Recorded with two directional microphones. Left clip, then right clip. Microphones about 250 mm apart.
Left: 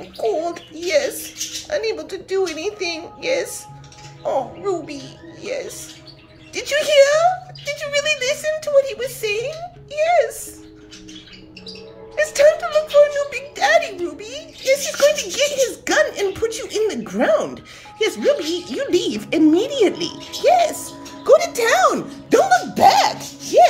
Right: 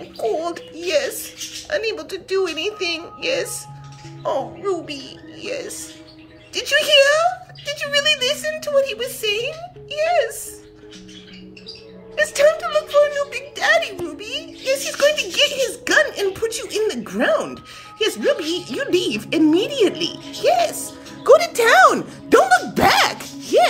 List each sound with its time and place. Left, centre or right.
0.3 s a woman's voice: centre
12.2 s a woman's voice: centre